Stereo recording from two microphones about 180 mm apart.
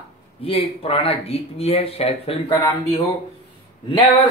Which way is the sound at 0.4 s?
30° left (ahead or behind).